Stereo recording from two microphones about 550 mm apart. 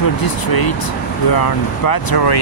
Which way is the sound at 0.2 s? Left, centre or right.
Left.